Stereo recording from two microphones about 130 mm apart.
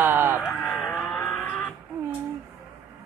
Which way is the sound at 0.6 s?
10° left (ahead or behind).